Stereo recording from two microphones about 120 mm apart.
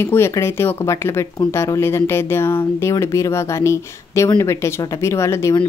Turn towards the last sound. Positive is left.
turn(degrees=25)  # may be behind; listen again after turning